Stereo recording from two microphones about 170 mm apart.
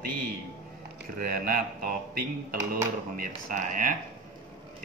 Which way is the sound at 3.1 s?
50° right (ahead or behind).